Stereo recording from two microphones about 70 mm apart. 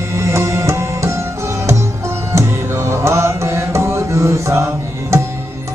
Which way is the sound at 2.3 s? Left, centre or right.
Right.